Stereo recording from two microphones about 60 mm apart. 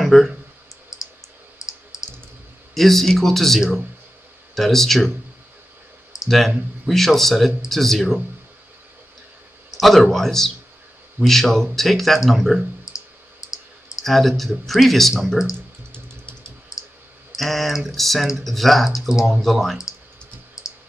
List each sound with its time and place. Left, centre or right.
0.0 s clicking: centre
2.7 s speech: centre
6.2 s speech: centre
9.8 s speech: centre
13.5 s clicking: left
14.0 s speech: centre
17.4 s speech: centre